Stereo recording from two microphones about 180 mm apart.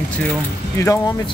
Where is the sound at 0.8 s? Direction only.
20° left (ahead or behind).